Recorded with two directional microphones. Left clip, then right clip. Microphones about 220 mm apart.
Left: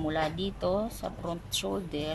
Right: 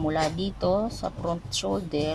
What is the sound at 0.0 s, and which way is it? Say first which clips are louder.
Speech: right 4 dB; 5° right (ahead or behind).